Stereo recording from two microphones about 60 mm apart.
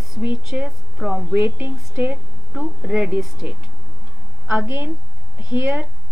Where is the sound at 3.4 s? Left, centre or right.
Right.